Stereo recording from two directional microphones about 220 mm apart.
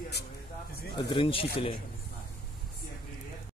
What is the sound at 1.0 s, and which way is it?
Speech, 25° left (ahead or behind).